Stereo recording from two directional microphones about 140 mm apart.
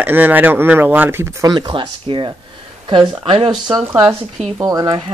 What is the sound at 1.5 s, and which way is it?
Speech, 30° right (ahead or behind).